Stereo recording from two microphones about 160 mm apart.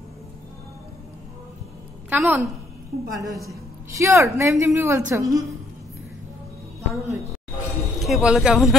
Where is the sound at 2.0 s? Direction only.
10° right (ahead or behind).